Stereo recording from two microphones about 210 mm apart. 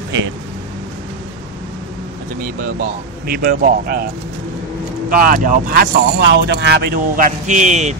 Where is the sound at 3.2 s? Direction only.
45° right (ahead or behind).